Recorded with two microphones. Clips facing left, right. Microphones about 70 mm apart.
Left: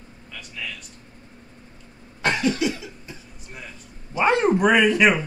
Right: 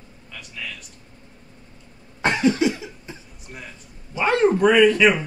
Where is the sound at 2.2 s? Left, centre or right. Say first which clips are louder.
Right 3 dB; right.